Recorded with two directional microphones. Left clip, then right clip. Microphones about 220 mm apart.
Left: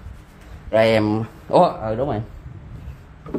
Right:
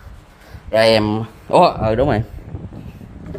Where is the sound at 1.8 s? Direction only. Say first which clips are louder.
Right 7 dB; 40° right (ahead or behind).